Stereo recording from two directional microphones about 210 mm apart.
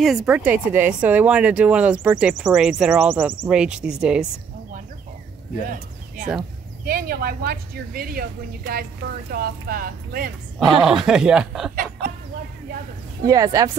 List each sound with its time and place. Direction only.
0.0 s a woman's voice: 5° right (ahead or behind)
5.7 s a sound: 45° right (ahead or behind)
6.9 s speech: 45° right (ahead or behind)
10.8 s a woman's voice: centre (ahead or behind)
11.7 s chicken: 40° right (ahead or behind)
13.3 s speech: 15° right (ahead or behind)